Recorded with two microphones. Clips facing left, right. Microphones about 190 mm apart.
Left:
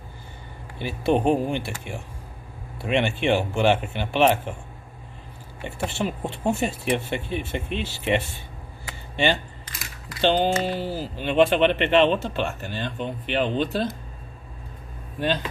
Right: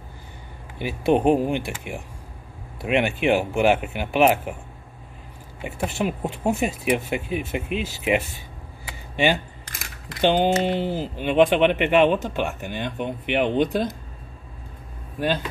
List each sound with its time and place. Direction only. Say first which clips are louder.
0.7 s speech: right 2 dB; 10° right (ahead or behind)
5.6 s speech: right 2 dB; 5° right (ahead or behind)
9.1 s speech: right 2 dB; 10° right (ahead or behind)
11.2 s speech: right 1 dB; 10° right (ahead or behind)
15.1 s speech: right 1 dB; 10° right (ahead or behind)